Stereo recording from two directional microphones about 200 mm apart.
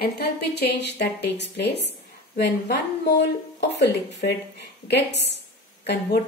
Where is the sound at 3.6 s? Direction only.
60° left (ahead or behind).